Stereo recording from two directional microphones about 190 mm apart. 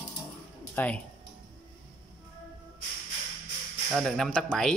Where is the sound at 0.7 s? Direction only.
5° left (ahead or behind).